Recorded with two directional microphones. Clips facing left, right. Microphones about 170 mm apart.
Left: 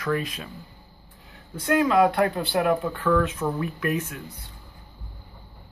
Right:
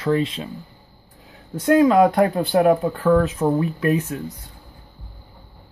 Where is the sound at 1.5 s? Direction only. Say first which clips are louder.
Right 6 dB; 40° right (ahead or behind).